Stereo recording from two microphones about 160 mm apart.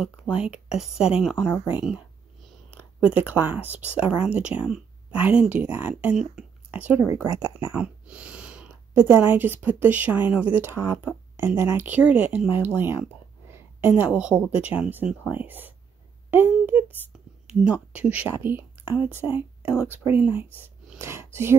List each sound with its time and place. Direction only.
0.0 s speech: 5° right (ahead or behind)
1.9 s a sound: centre (ahead or behind)
3.0 s speech: 10° right (ahead or behind)